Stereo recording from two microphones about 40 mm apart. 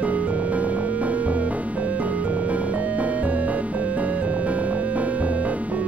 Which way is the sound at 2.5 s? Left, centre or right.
Right.